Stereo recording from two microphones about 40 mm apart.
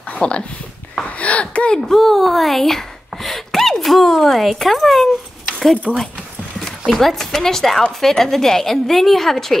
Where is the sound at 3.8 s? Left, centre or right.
Centre.